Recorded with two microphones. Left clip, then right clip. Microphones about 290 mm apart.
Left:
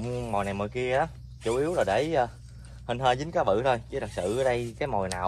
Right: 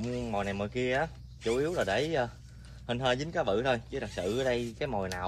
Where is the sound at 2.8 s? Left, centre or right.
Centre.